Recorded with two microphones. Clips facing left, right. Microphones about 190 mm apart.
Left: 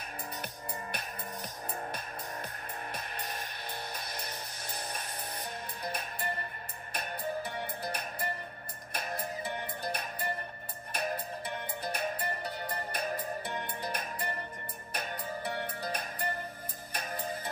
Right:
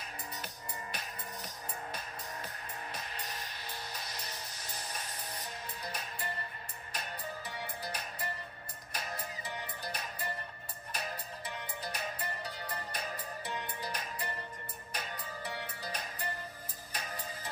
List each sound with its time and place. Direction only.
2.9 s music: 55° left (ahead or behind)
5.8 s music: 55° left (ahead or behind)